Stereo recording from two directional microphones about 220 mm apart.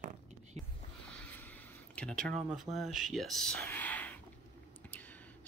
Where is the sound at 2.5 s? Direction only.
Centre (ahead or behind).